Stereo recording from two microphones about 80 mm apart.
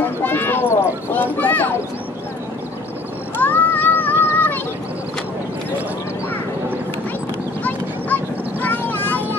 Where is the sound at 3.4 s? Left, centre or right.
Left.